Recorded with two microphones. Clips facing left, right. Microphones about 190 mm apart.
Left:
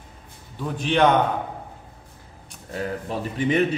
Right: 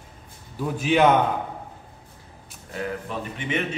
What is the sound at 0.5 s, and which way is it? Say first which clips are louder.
Speech: right 1 dB; 5° right (ahead or behind).